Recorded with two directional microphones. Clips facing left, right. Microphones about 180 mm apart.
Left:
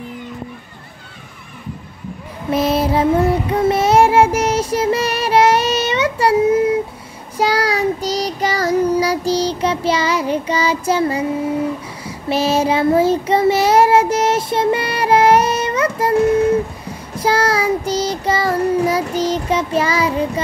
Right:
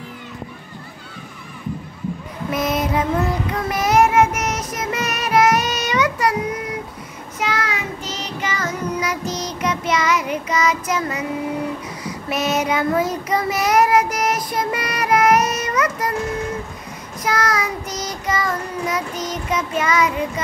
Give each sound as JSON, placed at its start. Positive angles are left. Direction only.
{"t": 2.5, "sound": "child singing", "side_deg": 30}